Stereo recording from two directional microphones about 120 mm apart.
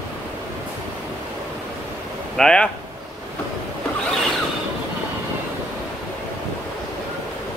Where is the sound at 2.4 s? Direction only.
5° left (ahead or behind).